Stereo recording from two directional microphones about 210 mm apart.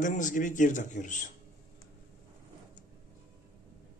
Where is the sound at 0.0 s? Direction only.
35° left (ahead or behind).